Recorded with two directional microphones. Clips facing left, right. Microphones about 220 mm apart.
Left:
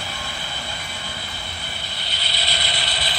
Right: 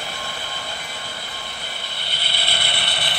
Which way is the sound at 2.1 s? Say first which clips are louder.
Even; 55° right (ahead or behind).